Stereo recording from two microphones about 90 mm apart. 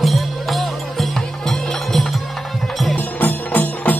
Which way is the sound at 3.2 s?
20° left (ahead or behind).